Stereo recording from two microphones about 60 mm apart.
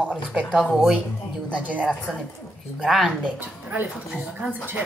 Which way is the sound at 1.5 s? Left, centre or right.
Right.